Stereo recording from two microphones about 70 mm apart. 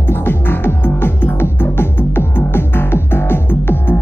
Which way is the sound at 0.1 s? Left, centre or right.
Left.